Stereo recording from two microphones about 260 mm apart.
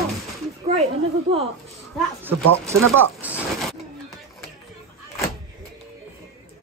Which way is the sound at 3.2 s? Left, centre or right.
Centre.